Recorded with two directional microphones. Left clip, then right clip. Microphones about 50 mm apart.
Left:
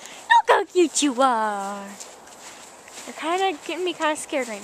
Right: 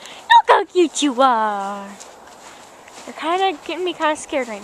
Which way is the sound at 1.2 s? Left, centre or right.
Centre.